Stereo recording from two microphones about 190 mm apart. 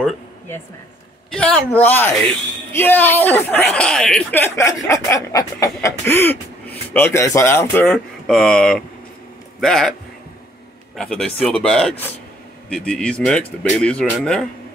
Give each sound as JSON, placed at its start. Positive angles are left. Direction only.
{"t": 1.3, "sound": "speech", "side_deg": 5}
{"t": 11.0, "sound": "speech", "side_deg": 5}